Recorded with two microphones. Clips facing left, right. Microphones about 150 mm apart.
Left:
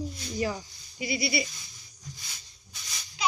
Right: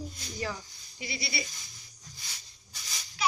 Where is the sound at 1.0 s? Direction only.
10° left (ahead or behind).